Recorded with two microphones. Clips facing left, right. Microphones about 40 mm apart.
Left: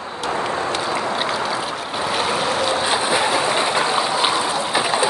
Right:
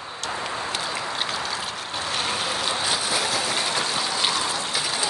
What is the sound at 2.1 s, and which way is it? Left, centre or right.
Boat, centre.